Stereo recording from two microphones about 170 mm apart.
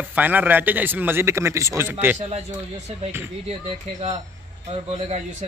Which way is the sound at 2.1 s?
40° right (ahead or behind).